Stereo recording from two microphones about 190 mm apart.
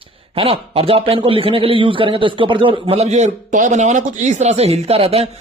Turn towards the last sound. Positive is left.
turn(degrees=-30)  # may be behind; listen again after turning